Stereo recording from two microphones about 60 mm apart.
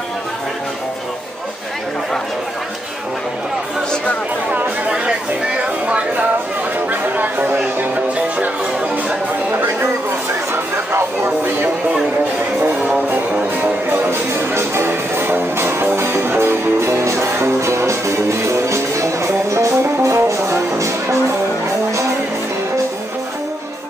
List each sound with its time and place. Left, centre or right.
4.5 s chatter: centre
5.9 s a sound: centre
6.9 s music: right
10.5 s music: right
13.9 s music: right